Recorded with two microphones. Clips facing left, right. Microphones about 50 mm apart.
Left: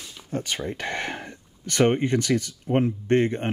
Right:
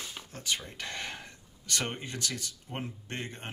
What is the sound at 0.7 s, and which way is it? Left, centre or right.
Speech, left.